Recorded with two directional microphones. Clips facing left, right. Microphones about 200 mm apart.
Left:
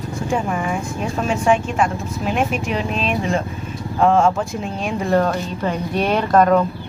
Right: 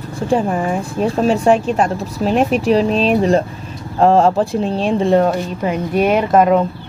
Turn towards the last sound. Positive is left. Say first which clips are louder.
# right 3 dB
turn(degrees=-5)  # may be behind; listen again after turning